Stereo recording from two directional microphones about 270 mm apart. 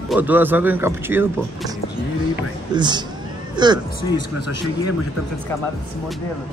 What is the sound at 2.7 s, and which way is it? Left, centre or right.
Speech, centre.